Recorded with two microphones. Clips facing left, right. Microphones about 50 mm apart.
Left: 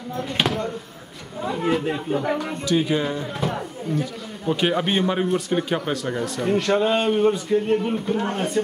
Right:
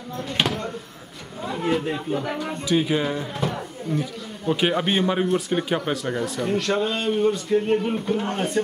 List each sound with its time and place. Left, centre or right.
0.2 s speech: centre
2.6 s speech: centre
6.8 s speech: left
7.5 s speech: centre